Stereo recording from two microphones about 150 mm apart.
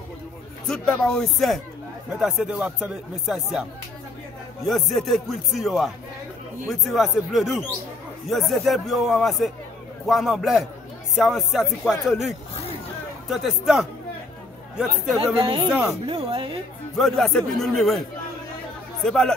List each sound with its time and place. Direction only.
0.7 s speech: 5° left (ahead or behind)
4.6 s speech: centre (ahead or behind)
15.1 s speech: 35° right (ahead or behind)
16.9 s speech: centre (ahead or behind)
19.0 s speech: 5° left (ahead or behind)